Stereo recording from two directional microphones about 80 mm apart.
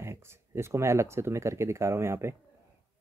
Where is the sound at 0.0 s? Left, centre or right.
Right.